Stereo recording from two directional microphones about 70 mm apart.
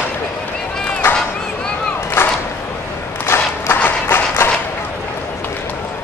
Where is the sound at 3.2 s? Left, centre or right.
Left.